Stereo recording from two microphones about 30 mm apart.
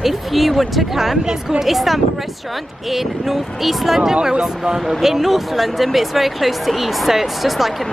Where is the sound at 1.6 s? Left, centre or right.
Centre.